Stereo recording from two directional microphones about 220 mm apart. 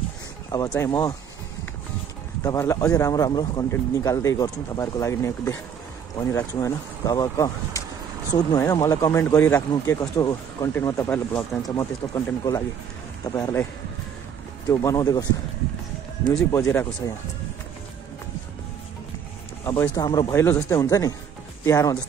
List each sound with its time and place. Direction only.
0.5 s speech: 15° left (ahead or behind)
2.4 s speech: 15° left (ahead or behind)
14.7 s speech: 15° left (ahead or behind)
16.3 s speech: 10° left (ahead or behind)
19.6 s speech: 15° left (ahead or behind)